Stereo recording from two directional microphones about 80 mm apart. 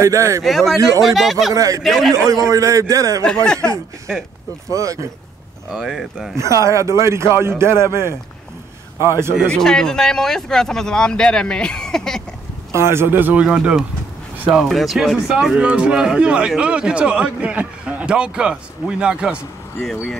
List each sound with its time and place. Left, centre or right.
0.0 s a man's voice: right
0.4 s speech: centre
1.5 s a man's voice: right
1.8 s speech: centre
2.5 s a man's voice: right
3.3 s speech: centre
4.6 s a man's voice: right
5.7 s speech: centre
6.3 s a man's voice: right
9.5 s speech: centre
12.7 s speech: right; by 13.7 s centre
14.6 s speech: centre
19.8 s speech: centre